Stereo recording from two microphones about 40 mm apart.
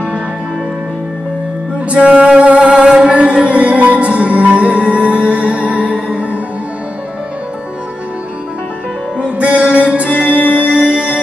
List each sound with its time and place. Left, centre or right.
2.3 s music: right
9.2 s music: right